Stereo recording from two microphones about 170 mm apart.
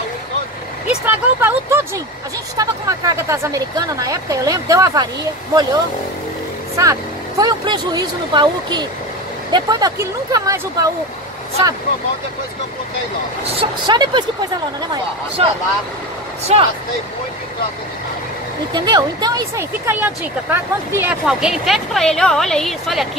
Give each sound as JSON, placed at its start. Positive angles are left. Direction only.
{"t": 1.0, "sound": "vehicle", "side_deg": -15}
{"t": 2.5, "sound": "speech", "side_deg": -20}
{"t": 6.8, "sound": "speech", "side_deg": -20}
{"t": 13.4, "sound": "speech", "side_deg": -30}
{"t": 18.7, "sound": "speech", "side_deg": -25}
{"t": 19.9, "sound": "speech", "side_deg": -10}